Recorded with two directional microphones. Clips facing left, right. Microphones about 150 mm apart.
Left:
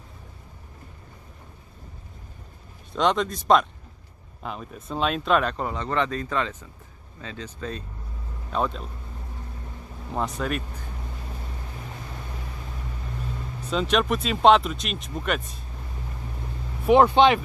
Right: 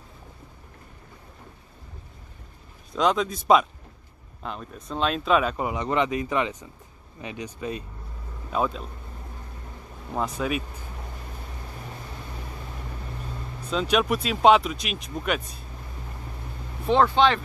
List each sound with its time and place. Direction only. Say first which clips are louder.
2.9 s speech: even; centre (ahead or behind)
4.4 s speech: left 1 dB; 5° left (ahead or behind)
10.1 s speech: right 1 dB; centre (ahead or behind)
13.7 s speech: even; centre (ahead or behind)
16.8 s speech: left 3 dB; 15° left (ahead or behind)